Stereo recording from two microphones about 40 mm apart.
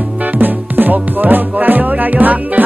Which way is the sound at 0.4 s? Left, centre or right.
Right.